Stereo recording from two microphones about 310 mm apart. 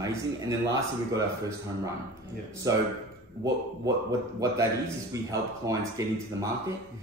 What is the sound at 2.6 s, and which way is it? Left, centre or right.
Speech, centre.